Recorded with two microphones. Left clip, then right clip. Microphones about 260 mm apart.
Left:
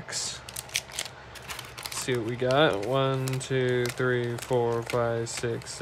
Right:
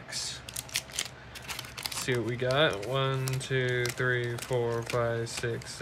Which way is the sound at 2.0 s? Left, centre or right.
Centre.